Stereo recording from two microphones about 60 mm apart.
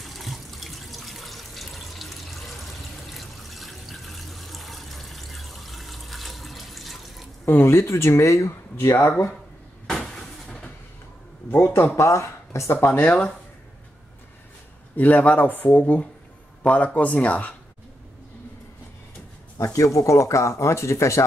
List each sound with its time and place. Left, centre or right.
0.0 s water: centre
7.4 s speech: left
9.8 s cupboard open or close: centre
11.5 s speech: left
12.8 s speech: left
15.0 s speech: left
19.6 s speech: left